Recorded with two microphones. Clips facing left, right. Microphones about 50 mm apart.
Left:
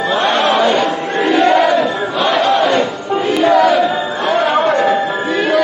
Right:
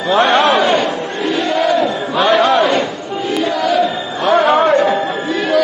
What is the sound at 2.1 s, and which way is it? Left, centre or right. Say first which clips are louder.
Crowd: right 2 dB; centre.